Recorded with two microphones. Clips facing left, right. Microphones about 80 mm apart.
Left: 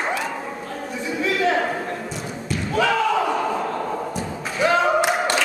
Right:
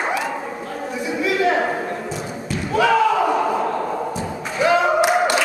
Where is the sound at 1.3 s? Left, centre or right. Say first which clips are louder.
Right 2 dB; centre.